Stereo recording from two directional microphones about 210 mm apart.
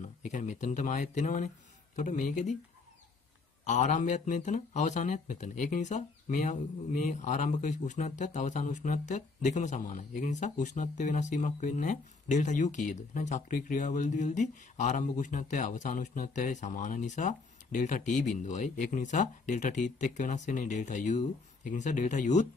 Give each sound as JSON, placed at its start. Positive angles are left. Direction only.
{"t": 0.0, "sound": "speech", "side_deg": 35}
{"t": 3.6, "sound": "speech", "side_deg": 35}